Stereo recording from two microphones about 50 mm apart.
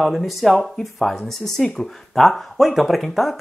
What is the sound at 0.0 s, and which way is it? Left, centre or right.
Speech, centre.